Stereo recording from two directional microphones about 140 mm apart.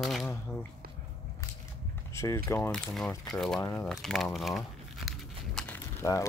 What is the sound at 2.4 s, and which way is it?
Speech, 20° left (ahead or behind).